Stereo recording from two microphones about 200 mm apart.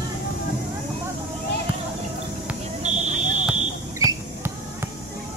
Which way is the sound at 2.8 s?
35° right (ahead or behind).